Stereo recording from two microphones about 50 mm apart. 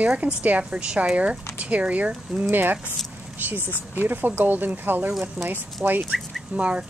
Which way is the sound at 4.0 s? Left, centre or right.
Right.